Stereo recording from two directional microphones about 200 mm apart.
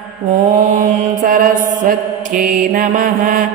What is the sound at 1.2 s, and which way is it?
Mantra, 40° right (ahead or behind).